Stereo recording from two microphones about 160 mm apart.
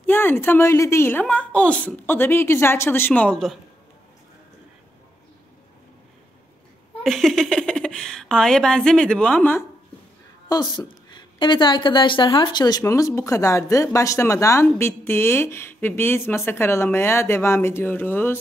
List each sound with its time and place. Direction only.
0.0 s a woman's voice: 10° left (ahead or behind)
7.0 s a sound: centre (ahead or behind)
10.5 s a woman's voice: 25° left (ahead or behind)